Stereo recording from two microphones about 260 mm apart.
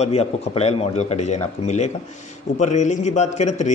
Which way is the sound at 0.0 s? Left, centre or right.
Left.